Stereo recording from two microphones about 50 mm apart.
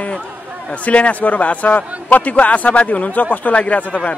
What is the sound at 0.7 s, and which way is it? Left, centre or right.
A man's voice, left.